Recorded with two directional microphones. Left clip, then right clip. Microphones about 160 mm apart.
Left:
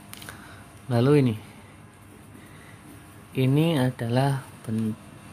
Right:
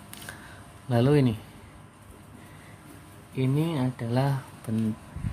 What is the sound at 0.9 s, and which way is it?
Speech, 10° left (ahead or behind).